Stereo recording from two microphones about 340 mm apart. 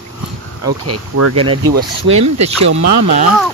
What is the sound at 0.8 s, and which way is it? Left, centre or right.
Speech, right.